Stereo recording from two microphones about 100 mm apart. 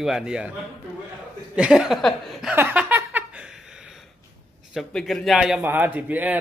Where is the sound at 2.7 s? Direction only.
15° right (ahead or behind).